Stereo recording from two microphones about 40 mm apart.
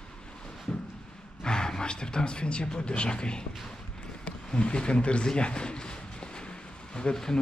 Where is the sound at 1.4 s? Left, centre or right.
Centre.